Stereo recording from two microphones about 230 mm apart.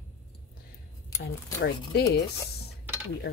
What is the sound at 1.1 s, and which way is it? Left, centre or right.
Speech, centre.